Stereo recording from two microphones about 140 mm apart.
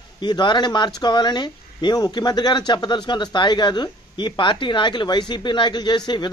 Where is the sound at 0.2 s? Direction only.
35° left (ahead or behind).